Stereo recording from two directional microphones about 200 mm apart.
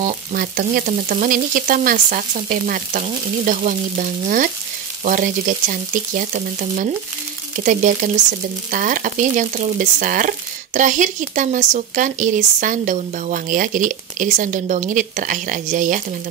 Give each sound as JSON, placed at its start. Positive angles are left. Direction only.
{"t": 0.0, "sound": "frying", "side_deg": -45}
{"t": 5.0, "sound": "speech", "side_deg": -40}